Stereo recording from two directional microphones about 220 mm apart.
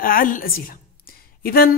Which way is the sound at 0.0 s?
40° left (ahead or behind).